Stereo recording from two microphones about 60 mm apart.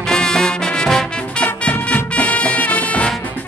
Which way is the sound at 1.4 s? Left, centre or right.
Left.